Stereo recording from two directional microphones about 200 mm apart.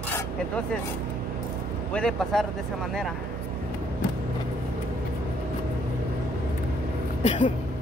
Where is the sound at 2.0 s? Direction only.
5° left (ahead or behind).